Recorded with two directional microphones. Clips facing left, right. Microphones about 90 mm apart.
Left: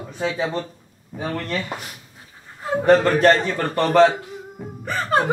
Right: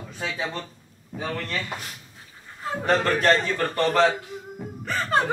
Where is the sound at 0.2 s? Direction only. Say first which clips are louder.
Left 7 dB; 25° left (ahead or behind).